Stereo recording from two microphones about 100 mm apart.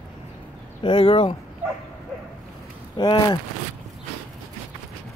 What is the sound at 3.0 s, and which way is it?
Speech, 45° left (ahead or behind).